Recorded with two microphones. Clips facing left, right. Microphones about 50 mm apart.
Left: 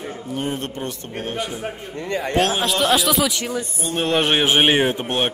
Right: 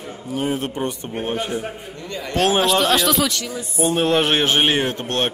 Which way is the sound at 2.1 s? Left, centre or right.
Left.